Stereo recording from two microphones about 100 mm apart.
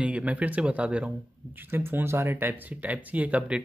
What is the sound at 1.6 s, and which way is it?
Speech, 20° right (ahead or behind).